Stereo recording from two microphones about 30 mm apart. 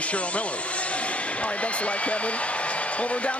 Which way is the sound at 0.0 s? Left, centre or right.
Left.